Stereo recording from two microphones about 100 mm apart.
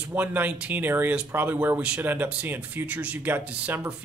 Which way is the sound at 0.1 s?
15° right (ahead or behind).